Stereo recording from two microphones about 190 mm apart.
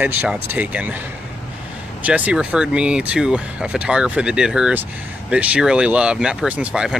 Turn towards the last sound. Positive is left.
turn(degrees=-5)  # may be behind; listen again after turning